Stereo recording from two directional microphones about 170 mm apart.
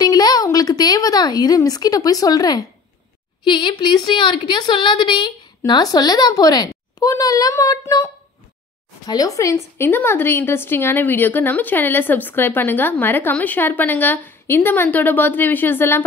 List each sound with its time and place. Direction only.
0.0 s a woman's voice: 25° left (ahead or behind)